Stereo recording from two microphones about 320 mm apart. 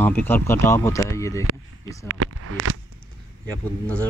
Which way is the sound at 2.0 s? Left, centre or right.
Right.